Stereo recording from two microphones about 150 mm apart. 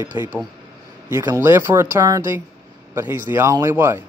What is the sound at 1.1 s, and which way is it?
Speech, 15° right (ahead or behind).